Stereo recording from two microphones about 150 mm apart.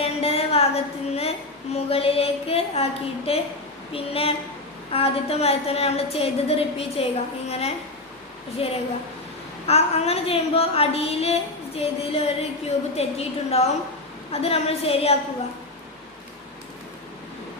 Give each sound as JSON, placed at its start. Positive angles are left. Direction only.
{"t": 0.0, "sound": "a woman's voice", "side_deg": 40}